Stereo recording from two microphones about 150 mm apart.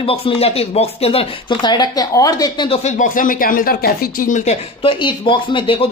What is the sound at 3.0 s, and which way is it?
Speech, 60° left (ahead or behind).